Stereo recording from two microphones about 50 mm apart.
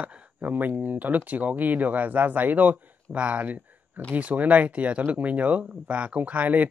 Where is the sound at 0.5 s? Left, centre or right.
Right.